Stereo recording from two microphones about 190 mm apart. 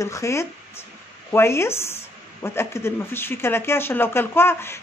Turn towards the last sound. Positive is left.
turn(degrees=10)  # may be behind; listen again after turning